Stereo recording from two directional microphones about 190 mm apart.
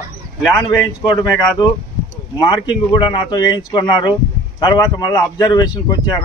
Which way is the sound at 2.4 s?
20° left (ahead or behind).